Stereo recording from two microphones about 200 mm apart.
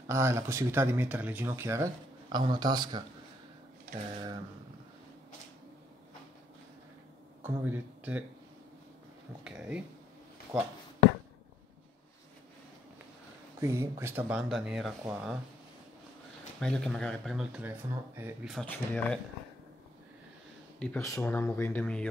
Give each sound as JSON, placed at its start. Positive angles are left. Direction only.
{"t": 0.0, "sound": "speech", "side_deg": -15}
{"t": 4.1, "sound": "a sound", "side_deg": -20}
{"t": 7.4, "sound": "speech", "side_deg": -10}
{"t": 9.4, "sound": "speech", "side_deg": -5}
{"t": 13.6, "sound": "speech", "side_deg": -15}
{"t": 16.5, "sound": "speech", "side_deg": 5}
{"t": 18.5, "sound": "speech", "side_deg": 5}
{"t": 21.0, "sound": "speech", "side_deg": 15}